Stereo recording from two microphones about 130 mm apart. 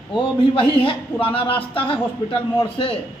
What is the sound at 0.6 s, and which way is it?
A man's voice, 45° left (ahead or behind).